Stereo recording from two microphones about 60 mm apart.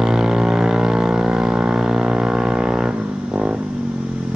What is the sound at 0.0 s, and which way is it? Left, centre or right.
Vehicle, centre.